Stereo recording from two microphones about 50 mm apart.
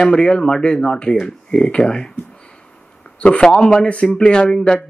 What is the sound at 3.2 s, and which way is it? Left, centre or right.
A man's voice, centre.